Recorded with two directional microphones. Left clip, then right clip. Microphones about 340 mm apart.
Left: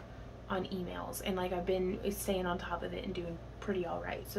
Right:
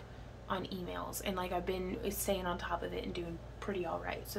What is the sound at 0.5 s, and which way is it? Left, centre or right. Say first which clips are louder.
A woman's voice: left 1 dB; centre.